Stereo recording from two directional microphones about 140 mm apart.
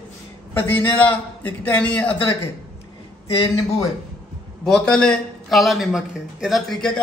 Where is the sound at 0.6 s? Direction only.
15° left (ahead or behind).